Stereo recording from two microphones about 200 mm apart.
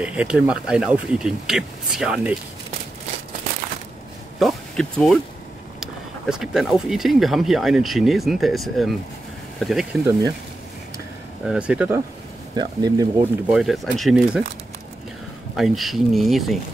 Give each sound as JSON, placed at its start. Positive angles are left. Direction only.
{"t": 0.0, "sound": "speech", "side_deg": -5}
{"t": 4.4, "sound": "speech", "side_deg": 0}
{"t": 11.4, "sound": "speech", "side_deg": -5}
{"t": 12.5, "sound": "speech", "side_deg": -20}
{"t": 13.5, "sound": "speech", "side_deg": 0}
{"t": 15.5, "sound": "speech", "side_deg": 0}